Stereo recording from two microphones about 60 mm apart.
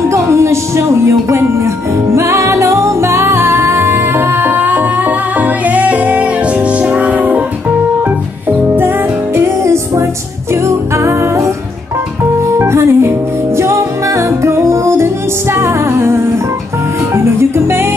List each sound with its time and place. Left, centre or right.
0.1 s speech: right
2.1 s music: right
8.5 s music: right
9.4 s music: right
12.5 s music: right